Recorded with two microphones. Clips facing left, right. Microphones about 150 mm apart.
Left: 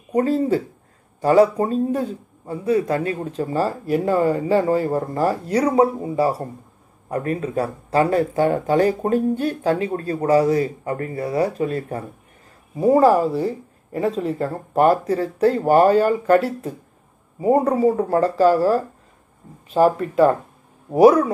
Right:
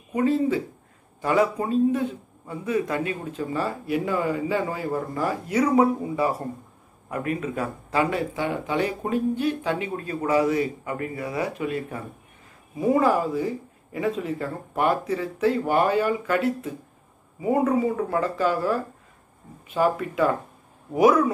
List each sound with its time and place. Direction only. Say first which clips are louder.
0.1 s a man's voice: left 3 dB; 40° left (ahead or behind)